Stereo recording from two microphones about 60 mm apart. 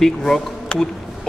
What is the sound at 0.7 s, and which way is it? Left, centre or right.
Speech, centre.